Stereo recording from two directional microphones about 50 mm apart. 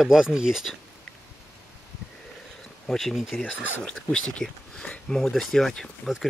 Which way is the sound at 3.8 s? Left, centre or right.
Centre.